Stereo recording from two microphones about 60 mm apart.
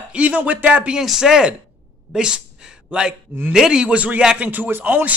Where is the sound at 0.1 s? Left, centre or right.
Right.